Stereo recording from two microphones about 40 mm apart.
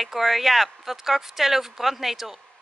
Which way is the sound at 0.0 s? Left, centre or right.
Centre.